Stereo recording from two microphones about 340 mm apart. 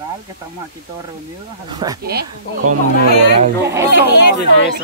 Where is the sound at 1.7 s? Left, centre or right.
Centre.